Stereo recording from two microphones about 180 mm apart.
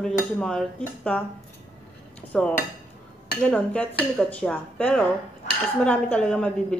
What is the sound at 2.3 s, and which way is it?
A woman's voice, 5° left (ahead or behind).